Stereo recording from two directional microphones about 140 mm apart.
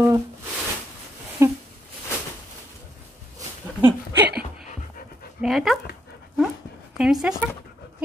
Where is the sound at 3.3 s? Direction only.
15° right (ahead or behind).